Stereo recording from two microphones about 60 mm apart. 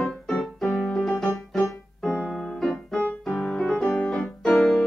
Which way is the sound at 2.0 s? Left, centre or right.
Centre.